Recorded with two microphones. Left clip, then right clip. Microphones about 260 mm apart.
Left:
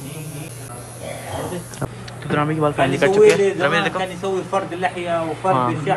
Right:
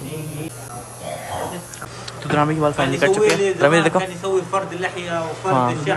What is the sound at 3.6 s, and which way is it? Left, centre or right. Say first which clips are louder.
Speech: right 3 dB; right.